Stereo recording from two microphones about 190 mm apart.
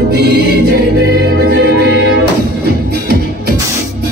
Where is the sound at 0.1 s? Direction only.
55° right (ahead or behind).